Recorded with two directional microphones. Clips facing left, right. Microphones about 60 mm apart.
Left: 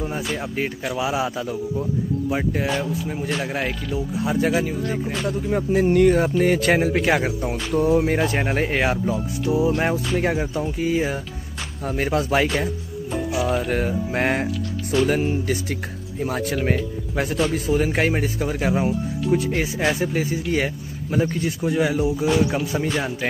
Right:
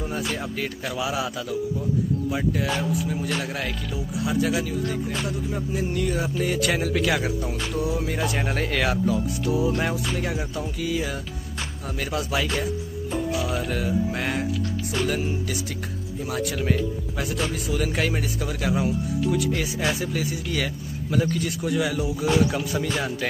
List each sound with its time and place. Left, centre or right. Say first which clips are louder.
0.6 s speech: left 4 dB; left
5.7 s music: left 12 dB; left
6.4 s speech: left 3 dB; left
13.7 s music: left 2 dB; left
14.9 s speech: left 7 dB; left